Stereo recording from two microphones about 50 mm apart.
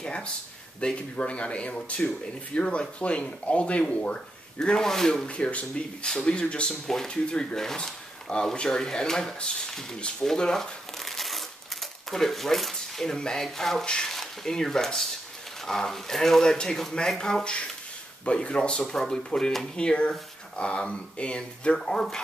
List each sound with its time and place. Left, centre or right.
0.0 s a sound: left
0.7 s speech: left
5.3 s speech: left
6.0 s speech: centre
10.2 s crumpling: centre
13.8 s speech: centre